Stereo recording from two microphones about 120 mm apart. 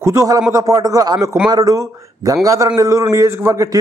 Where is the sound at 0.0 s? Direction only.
25° right (ahead or behind).